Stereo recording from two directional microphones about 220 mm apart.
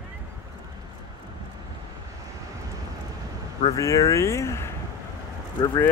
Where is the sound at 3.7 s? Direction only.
15° left (ahead or behind).